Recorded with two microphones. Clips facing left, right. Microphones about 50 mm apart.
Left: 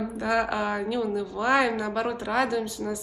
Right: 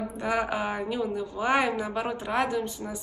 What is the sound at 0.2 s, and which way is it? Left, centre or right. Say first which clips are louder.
A woman's voice: left 2 dB; right.